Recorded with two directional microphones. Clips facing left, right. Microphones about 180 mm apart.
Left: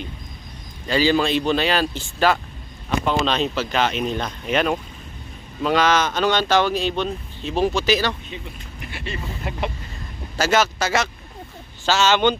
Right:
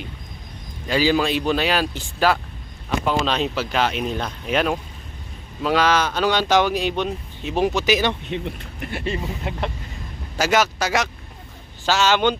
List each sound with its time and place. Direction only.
0.8 s speech: 10° right (ahead or behind)
8.9 s speech: 40° right (ahead or behind)
9.5 s chicken: 20° right (ahead or behind)
10.3 s speech: 10° right (ahead or behind)